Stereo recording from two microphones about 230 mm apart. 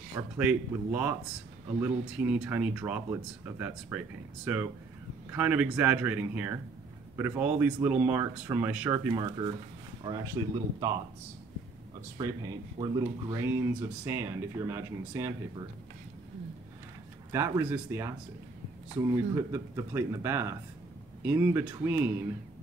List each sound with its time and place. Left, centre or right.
0.5 s speech: centre
12.2 s speech: centre
17.3 s speech: centre